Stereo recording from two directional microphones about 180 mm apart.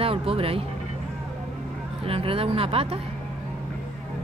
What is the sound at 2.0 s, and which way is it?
Speech, 30° right (ahead or behind).